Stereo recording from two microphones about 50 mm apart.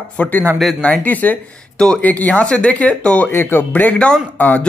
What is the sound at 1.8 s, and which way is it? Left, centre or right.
Speech, centre.